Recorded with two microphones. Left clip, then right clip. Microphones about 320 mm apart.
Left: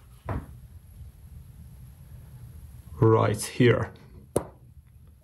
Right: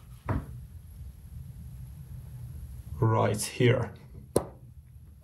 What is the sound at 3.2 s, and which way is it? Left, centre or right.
Speech, left.